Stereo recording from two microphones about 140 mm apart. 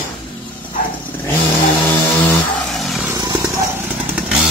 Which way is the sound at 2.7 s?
Centre (ahead or behind).